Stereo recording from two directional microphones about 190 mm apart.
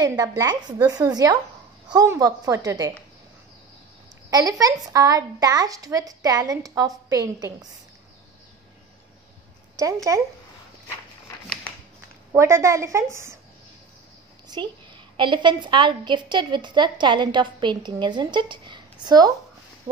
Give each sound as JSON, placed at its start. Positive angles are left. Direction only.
{"t": 0.2, "sound": "a woman's voice", "side_deg": -20}
{"t": 4.3, "sound": "a woman's voice", "side_deg": -20}
{"t": 9.8, "sound": "a woman's voice", "side_deg": -15}
{"t": 11.4, "sound": "a sound", "side_deg": 0}
{"t": 12.3, "sound": "a woman's voice", "side_deg": -15}
{"t": 14.5, "sound": "a woman's voice", "side_deg": -25}